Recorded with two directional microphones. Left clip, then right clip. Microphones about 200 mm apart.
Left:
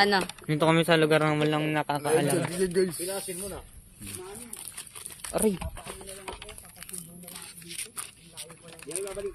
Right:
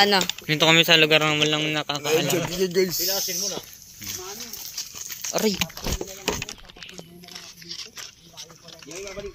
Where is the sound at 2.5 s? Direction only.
20° right (ahead or behind).